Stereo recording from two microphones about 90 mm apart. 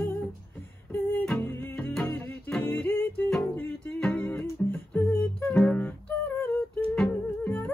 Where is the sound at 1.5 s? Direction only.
20° left (ahead or behind).